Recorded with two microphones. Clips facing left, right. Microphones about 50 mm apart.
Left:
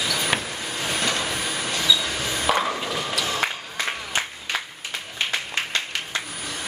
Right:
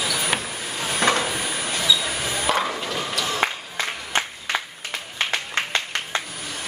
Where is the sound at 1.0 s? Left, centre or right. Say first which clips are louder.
Right 6 dB; right.